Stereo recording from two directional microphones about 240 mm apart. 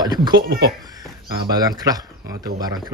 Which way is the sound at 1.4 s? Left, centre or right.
Centre.